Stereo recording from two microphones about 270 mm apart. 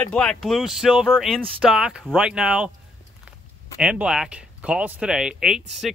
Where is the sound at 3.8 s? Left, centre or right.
Centre.